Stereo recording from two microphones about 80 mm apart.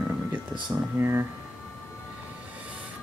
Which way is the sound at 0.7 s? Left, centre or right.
Right.